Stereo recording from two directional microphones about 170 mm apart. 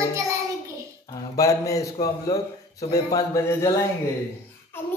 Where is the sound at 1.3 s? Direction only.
20° left (ahead or behind).